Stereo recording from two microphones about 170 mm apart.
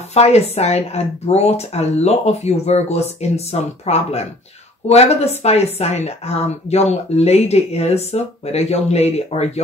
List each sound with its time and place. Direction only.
0.1 s speech: 40° left (ahead or behind)